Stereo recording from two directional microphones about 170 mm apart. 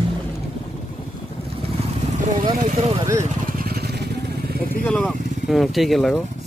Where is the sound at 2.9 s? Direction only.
20° right (ahead or behind).